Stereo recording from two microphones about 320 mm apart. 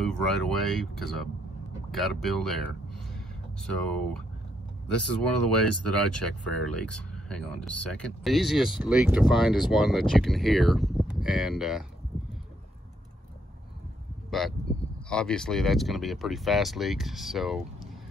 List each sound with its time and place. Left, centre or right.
0.0 s speech: centre
3.7 s speech: centre
5.9 s speech: centre
14.3 s speech: centre
14.7 s a sound: left
15.0 s speech: centre